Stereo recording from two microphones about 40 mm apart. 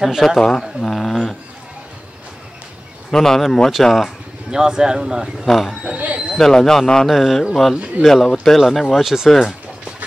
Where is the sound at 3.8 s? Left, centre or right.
Centre.